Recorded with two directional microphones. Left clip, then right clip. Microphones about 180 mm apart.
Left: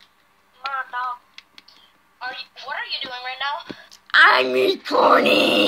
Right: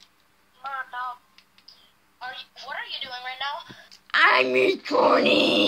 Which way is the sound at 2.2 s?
20° left (ahead or behind).